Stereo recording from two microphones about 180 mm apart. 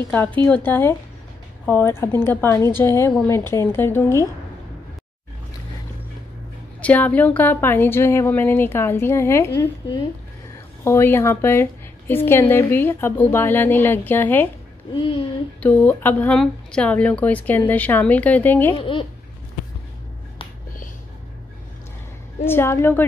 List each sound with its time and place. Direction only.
0.1 s speech: 10° left (ahead or behind)
6.8 s speech: 10° left (ahead or behind)
10.8 s a woman's voice: 15° left (ahead or behind)
15.6 s speech: 10° left (ahead or behind)
18.8 s a child's voice: 30° left (ahead or behind)
22.4 s speech: 15° left (ahead or behind)